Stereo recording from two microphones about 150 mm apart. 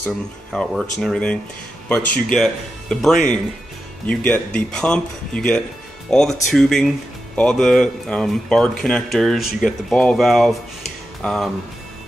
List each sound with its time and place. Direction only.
0.5 s speech: centre (ahead or behind)